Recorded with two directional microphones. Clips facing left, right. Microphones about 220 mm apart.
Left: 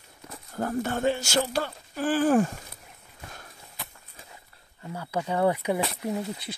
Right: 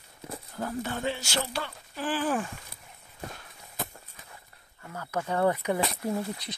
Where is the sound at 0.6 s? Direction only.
50° left (ahead or behind).